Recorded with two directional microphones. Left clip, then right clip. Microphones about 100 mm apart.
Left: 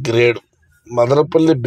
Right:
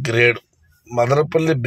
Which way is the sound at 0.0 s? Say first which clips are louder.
Left 2 dB; 5° left (ahead or behind).